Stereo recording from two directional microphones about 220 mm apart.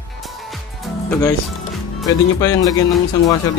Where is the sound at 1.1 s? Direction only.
10° left (ahead or behind).